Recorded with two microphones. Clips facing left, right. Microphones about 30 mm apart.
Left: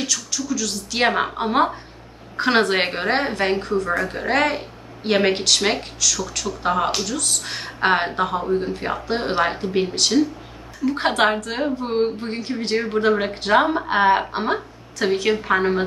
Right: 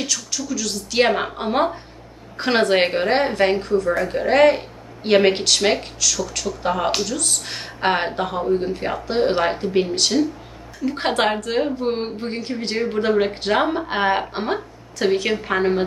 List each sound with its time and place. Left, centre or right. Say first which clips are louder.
0.0 s a woman's voice: even; centre